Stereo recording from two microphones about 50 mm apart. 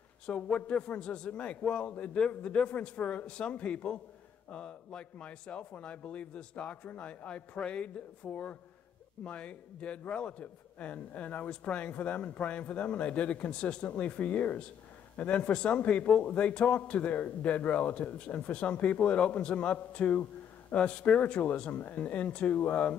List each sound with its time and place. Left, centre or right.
0.3 s a man's voice: left